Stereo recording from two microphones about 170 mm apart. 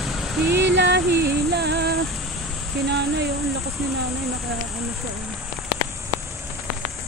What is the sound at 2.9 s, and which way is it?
Speech, 75° right (ahead or behind).